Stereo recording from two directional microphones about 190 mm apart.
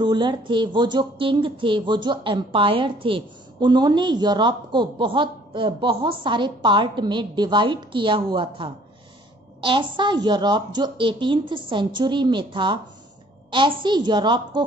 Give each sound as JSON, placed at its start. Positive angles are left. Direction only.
{"t": 0.0, "sound": "speech", "side_deg": -25}